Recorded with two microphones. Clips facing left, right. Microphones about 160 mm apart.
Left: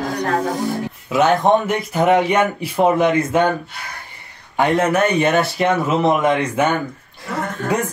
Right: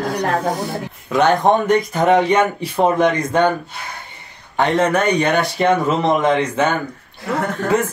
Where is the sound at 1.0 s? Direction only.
5° left (ahead or behind).